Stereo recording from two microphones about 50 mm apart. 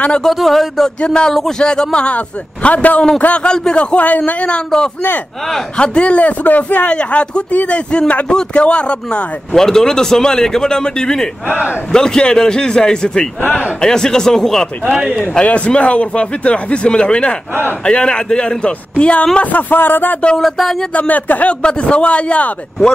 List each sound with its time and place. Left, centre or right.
0.2 s speech: centre
1.0 s a man's voice: centre; by 7.0 s left
7.0 s speech: left
9.6 s a man's voice: centre
11.4 s speech: right
11.9 s a man's voice: centre
15.4 s speech: left
20.3 s speech: centre
20.9 s speech: left
21.6 s speech: left